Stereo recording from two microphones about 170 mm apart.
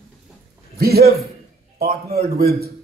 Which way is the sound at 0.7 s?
65° right (ahead or behind).